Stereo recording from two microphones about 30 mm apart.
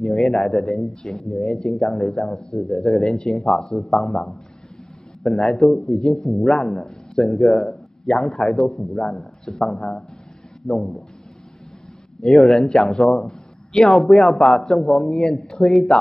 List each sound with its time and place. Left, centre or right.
0.0 s speech: centre
1.5 s speech: centre
1.9 s speech: centre
3.7 s speech: centre
5.4 s speech: centre
12.2 s speech: centre